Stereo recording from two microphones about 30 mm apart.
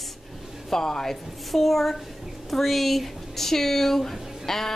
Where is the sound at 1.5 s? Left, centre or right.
Centre.